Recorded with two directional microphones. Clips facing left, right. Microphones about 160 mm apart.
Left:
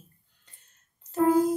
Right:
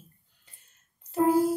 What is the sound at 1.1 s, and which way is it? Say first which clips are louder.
Speech: left 1 dB; 10° right (ahead or behind).